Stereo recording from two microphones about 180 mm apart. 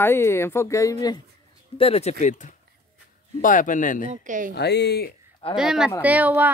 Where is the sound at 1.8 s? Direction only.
35° left (ahead or behind).